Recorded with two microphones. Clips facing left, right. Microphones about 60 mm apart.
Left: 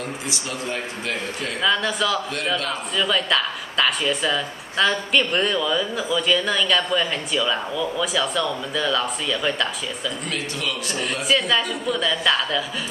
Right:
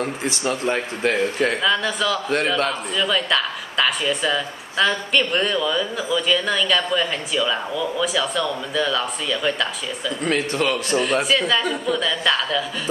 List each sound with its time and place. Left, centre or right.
0.0 s a man's voice: right
1.6 s a woman's voice: centre
10.2 s a man's voice: right
11.2 s a woman's voice: centre